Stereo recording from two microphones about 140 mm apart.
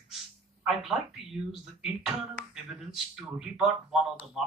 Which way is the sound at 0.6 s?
Centre (ahead or behind).